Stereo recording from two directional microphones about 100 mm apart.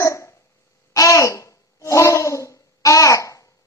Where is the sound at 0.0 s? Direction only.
30° left (ahead or behind).